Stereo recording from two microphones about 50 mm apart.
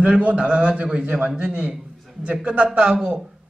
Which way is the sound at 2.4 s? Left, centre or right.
Right.